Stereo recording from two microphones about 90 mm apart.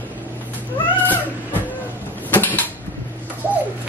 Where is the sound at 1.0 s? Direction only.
20° left (ahead or behind).